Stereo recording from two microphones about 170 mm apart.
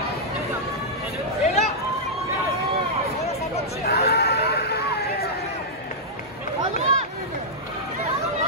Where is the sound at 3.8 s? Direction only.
65° left (ahead or behind).